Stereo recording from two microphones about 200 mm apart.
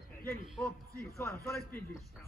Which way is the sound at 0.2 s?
10° left (ahead or behind).